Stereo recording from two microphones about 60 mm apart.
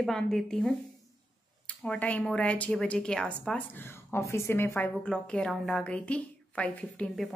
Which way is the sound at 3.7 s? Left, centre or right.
Left.